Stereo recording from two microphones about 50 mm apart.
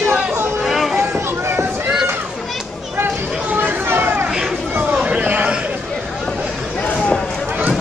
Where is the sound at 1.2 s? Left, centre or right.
Right.